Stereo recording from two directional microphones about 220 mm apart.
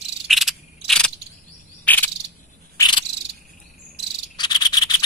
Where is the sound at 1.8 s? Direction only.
5° left (ahead or behind).